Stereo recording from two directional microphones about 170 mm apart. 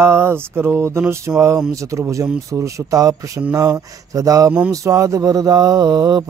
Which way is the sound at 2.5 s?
20° right (ahead or behind).